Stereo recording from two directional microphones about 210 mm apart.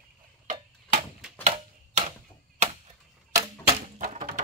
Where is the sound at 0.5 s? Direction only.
35° right (ahead or behind).